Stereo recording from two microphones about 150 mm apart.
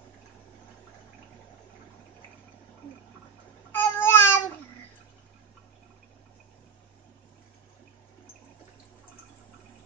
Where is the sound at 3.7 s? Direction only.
15° left (ahead or behind).